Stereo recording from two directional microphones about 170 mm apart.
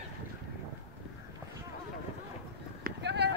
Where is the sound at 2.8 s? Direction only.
80° right.